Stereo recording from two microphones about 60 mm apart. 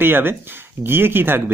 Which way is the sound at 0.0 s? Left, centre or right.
Right.